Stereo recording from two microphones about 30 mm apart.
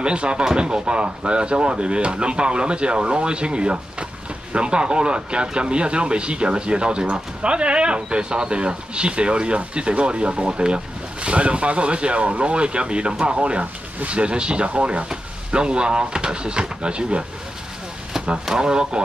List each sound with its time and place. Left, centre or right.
0.0 s speech: right
18.5 s speech: right